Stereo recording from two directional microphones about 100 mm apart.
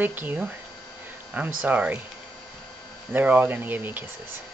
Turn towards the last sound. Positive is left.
turn(degrees=-20)  # may be behind; listen again after turning